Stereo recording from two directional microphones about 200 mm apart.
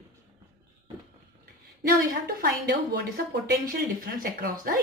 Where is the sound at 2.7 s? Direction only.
55° right (ahead or behind).